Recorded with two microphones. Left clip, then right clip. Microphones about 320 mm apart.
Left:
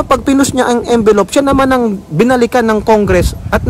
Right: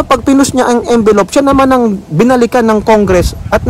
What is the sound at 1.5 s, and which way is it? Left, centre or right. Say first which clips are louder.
A man's voice: right 3 dB; right.